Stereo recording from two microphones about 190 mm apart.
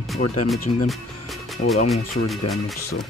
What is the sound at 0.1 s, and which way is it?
Speech, centre (ahead or behind).